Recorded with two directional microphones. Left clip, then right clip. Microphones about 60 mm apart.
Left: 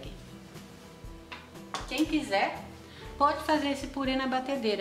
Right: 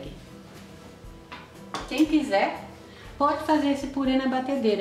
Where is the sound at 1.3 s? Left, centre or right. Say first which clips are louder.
Right 3 dB; centre.